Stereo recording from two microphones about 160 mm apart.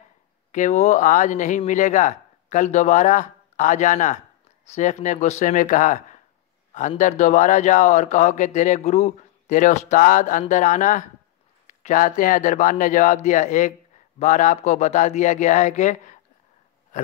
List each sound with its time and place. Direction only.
0.5 s a man's voice: 45° left (ahead or behind)